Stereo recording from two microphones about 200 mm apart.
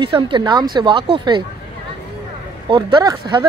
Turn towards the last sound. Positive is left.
turn(degrees=-20)  # may be behind; listen again after turning